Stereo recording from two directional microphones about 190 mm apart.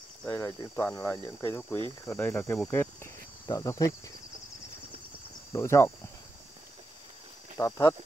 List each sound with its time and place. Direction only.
0.2 s cricket: 10° left (ahead or behind)
5.5 s cricket: 15° left (ahead or behind)
7.5 s cricket: 15° left (ahead or behind)